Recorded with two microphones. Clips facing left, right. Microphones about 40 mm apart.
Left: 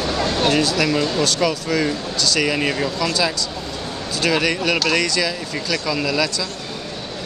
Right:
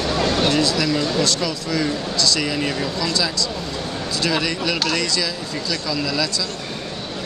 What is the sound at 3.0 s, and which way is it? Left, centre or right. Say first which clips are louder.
Speech: left 1 dB; left.